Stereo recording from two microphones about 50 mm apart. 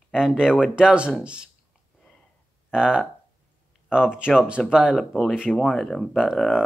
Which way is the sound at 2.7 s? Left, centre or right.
Centre.